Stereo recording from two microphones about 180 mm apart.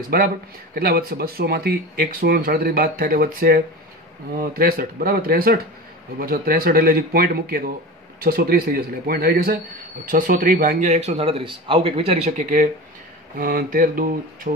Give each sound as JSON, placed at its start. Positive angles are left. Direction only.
{"t": 0.1, "sound": "speech", "side_deg": -55}
{"t": 13.4, "sound": "mantra", "side_deg": -55}